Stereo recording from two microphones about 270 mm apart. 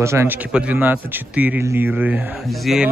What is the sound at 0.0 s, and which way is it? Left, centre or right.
Speech, centre.